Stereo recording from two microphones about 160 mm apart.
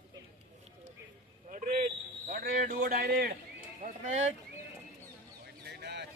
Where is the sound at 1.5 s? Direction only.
55° right (ahead or behind).